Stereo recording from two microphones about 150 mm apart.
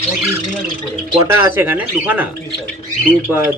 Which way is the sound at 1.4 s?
15° right (ahead or behind).